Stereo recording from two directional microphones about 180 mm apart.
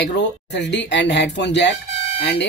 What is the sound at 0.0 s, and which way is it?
Speech, 75° left (ahead or behind).